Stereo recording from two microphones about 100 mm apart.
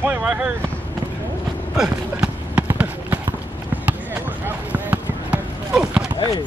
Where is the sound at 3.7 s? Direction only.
15° right (ahead or behind).